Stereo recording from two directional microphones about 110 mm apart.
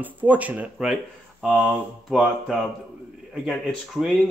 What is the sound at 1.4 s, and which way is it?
Mantra, 5° right (ahead or behind).